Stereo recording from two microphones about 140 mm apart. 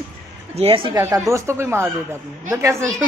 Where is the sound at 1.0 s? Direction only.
20° right (ahead or behind).